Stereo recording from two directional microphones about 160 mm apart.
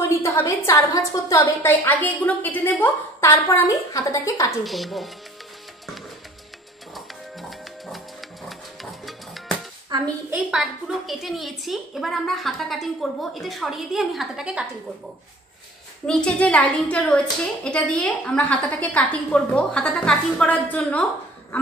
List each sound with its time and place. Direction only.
0.2 s a woman's voice: 20° left (ahead or behind)
4.6 s a woman's voice: centre (ahead or behind)
9.9 s a woman's voice: 25° right (ahead or behind)
10.3 s a woman's voice: centre (ahead or behind)
16.1 s a woman's voice: 5° left (ahead or behind)